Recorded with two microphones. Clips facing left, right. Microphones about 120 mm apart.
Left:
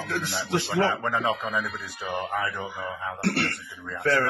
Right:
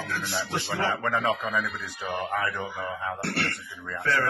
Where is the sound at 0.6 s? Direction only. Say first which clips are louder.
Left 3 dB; 20° left (ahead or behind).